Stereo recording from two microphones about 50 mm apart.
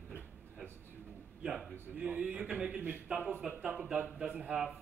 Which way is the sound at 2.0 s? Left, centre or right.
Right.